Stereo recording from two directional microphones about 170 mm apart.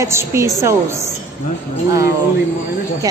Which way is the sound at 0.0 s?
15° right (ahead or behind).